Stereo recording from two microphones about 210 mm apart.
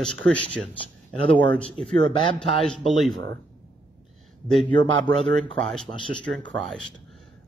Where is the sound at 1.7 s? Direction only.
25° right (ahead or behind).